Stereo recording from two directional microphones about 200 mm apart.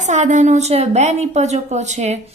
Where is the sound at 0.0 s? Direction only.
35° right (ahead or behind).